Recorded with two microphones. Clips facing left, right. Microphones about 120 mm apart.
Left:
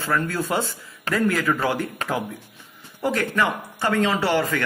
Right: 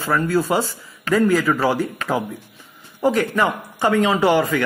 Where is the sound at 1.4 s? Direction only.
40° right (ahead or behind).